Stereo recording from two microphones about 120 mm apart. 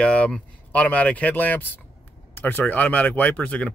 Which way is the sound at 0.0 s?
10° left (ahead or behind).